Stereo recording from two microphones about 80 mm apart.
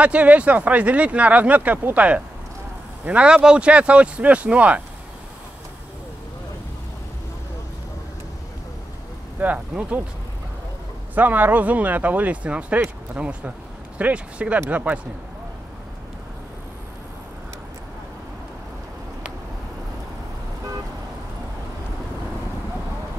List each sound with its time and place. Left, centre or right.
0.0 s speech: centre
9.4 s speech: centre
11.1 s speech: right